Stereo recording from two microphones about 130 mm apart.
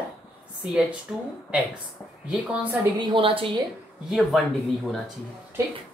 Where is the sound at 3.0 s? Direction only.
40° right (ahead or behind).